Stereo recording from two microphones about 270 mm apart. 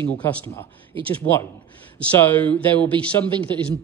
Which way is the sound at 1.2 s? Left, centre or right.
Centre.